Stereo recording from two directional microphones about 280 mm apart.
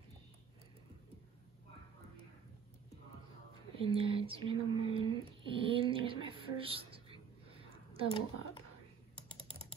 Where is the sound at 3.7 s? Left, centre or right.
Centre.